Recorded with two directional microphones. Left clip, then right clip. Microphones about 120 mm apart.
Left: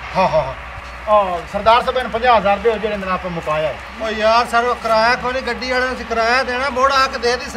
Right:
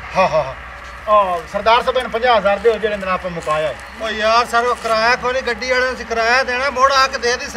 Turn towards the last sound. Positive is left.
turn(degrees=-5)  # may be behind; listen again after turning